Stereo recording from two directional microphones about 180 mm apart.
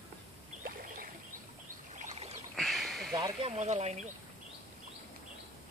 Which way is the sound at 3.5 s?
40° right (ahead or behind).